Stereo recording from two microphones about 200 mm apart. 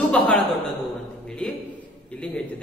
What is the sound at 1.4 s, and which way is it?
Speech, 5° left (ahead or behind).